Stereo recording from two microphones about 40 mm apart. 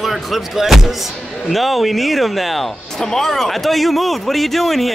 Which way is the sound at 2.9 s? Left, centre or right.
Centre.